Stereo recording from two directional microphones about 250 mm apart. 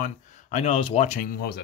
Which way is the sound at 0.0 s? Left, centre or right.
Left.